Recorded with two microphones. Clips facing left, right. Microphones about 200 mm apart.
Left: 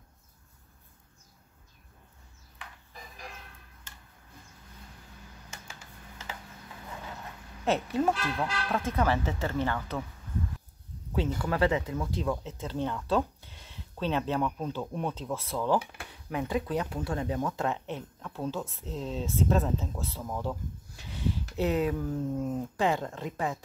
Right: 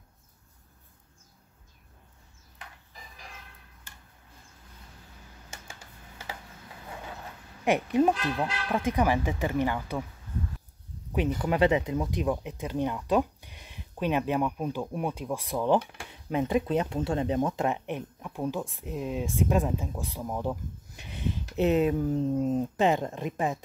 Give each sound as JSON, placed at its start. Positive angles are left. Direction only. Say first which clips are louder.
{"t": 7.6, "sound": "speech", "louder": "right 4 dB", "side_deg": -15}
{"t": 11.1, "sound": "speech", "louder": "right 3 dB", "side_deg": -15}